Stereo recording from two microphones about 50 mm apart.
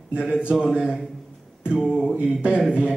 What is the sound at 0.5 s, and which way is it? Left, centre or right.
A man's voice, centre.